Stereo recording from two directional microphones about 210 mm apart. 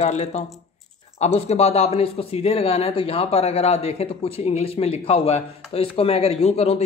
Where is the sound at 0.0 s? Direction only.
30° left (ahead or behind).